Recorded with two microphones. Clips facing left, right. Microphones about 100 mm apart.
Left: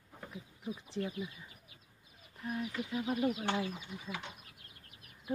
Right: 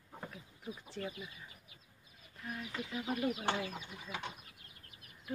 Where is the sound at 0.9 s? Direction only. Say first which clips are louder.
Left 4 dB; 15° left (ahead or behind).